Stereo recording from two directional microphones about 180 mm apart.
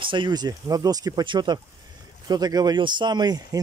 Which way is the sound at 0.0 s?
25° right (ahead or behind).